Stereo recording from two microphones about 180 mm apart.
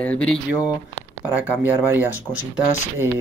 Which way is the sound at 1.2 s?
10° right (ahead or behind).